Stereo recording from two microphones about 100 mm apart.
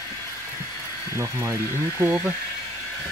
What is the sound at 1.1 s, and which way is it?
Speech, 30° right (ahead or behind).